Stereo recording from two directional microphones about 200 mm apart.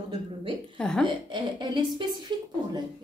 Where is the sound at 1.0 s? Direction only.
25° right (ahead or behind).